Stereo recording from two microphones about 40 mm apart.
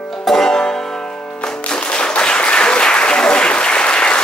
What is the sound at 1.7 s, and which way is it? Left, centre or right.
Applause, left.